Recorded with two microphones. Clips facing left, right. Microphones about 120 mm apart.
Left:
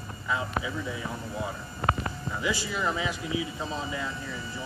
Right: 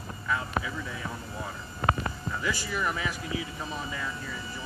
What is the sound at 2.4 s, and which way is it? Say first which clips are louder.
Speech: left 2 dB; 15° left (ahead or behind).